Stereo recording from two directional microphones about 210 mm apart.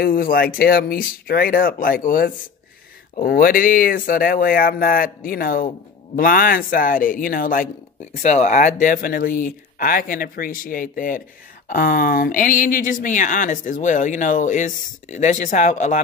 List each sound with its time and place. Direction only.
0.0 s speech: 45° left (ahead or behind)